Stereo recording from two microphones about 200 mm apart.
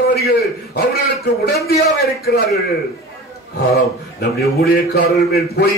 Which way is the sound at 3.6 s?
50° left (ahead or behind).